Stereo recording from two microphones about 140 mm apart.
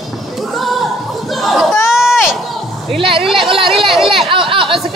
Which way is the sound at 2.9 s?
40° right (ahead or behind).